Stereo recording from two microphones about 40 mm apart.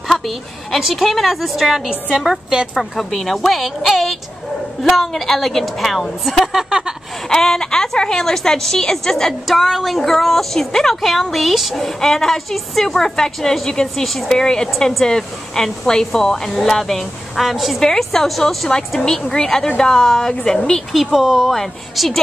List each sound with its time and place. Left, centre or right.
0.7 s a woman's voice: centre
1.9 s a woman's voice: centre
2.8 s a woman's voice: centre
7.2 s a woman's voice: centre
9.5 s a woman's voice: centre
9.9 s a woman's voice: centre
11.8 s a woman's voice: centre
20.9 s a woman's voice: centre